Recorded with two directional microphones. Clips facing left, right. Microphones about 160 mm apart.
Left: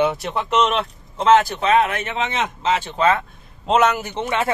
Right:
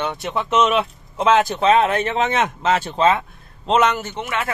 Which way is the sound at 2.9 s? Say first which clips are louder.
Right 1 dB; 25° right (ahead or behind).